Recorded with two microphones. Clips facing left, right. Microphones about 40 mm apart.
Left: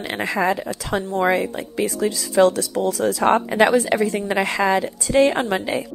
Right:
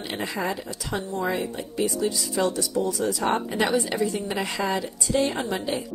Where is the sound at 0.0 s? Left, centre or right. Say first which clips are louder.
Left 7 dB; left.